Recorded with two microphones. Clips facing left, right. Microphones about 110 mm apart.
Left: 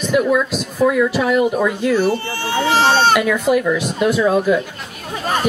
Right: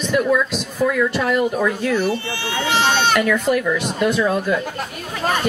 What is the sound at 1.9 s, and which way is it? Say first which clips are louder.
Speech: left 3 dB; 40° left (ahead or behind).